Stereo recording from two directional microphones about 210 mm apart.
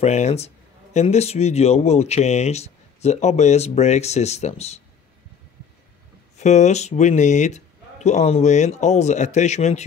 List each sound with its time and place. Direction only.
0.0 s speech: 30° left (ahead or behind)
6.3 s speech: 35° left (ahead or behind)